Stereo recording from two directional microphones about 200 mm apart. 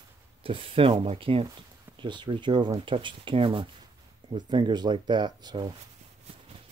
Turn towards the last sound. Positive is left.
turn(degrees=-20)  # may be behind; listen again after turning